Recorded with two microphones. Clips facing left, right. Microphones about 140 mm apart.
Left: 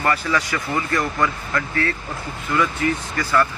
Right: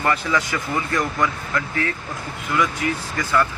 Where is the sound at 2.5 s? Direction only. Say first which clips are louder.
Left 1 dB; 10° right (ahead or behind).